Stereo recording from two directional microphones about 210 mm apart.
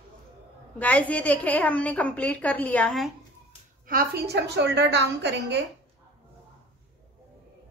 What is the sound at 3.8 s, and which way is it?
A woman's voice, 45° right (ahead or behind).